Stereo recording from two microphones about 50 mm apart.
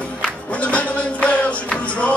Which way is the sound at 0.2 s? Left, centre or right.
Left.